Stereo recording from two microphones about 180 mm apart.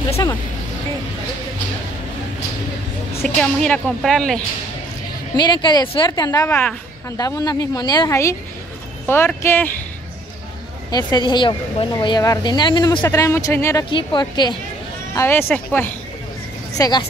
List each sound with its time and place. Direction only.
3.2 s speech: 5° left (ahead or behind)
5.3 s a woman's voice: 25° left (ahead or behind)
6.5 s a woman's voice: 5° left (ahead or behind)
7.2 s a woman's voice: 20° left (ahead or behind)
10.9 s a woman's voice: 25° left (ahead or behind)
13.8 s a woman's voice: 25° left (ahead or behind)
15.1 s a woman's voice: 10° left (ahead or behind)